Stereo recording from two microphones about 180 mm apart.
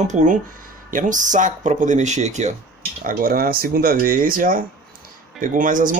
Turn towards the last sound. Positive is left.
turn(degrees=-45)  # may be behind; listen again after turning